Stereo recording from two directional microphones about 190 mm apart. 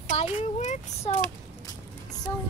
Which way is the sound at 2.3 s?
15° left (ahead or behind).